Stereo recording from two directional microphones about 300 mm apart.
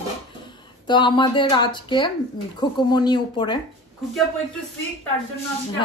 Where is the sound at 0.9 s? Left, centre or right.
Centre.